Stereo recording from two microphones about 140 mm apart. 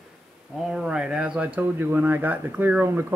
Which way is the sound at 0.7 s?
5° right (ahead or behind).